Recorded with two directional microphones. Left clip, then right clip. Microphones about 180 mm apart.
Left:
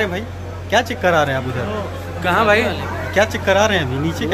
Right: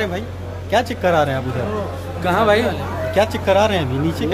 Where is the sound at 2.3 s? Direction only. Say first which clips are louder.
Left 1 dB; 10° right (ahead or behind).